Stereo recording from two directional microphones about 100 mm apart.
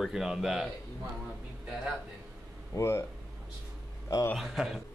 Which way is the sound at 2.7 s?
30° left (ahead or behind).